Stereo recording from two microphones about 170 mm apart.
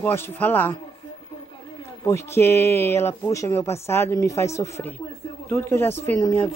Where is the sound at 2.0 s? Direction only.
15° left (ahead or behind).